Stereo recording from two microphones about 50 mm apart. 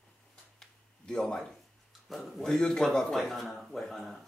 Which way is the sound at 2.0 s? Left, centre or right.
Centre.